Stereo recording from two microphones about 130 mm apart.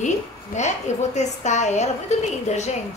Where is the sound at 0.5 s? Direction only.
65° left (ahead or behind).